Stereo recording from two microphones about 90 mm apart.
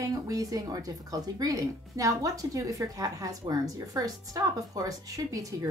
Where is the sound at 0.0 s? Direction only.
40° right (ahead or behind).